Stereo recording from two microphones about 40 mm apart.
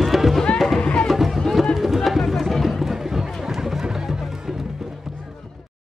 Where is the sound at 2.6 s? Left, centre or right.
Centre.